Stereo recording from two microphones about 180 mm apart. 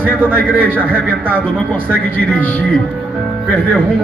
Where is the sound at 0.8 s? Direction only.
10° right (ahead or behind).